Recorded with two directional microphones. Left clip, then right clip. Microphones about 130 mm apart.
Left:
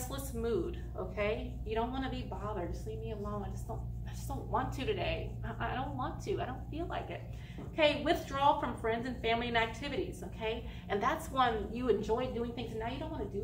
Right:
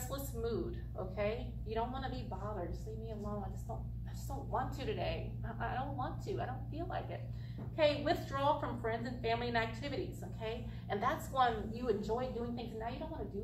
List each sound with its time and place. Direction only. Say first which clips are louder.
0.1 s a woman's voice: left 4 dB; 15° left (ahead or behind)
4.5 s a woman's voice: left 4 dB; 20° left (ahead or behind)